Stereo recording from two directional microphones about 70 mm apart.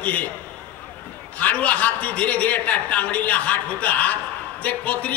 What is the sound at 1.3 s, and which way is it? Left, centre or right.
A man's voice, left.